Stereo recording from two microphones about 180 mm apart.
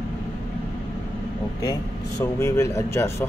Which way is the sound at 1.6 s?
20° left (ahead or behind).